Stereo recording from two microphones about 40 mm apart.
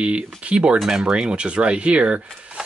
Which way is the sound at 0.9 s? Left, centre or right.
Centre.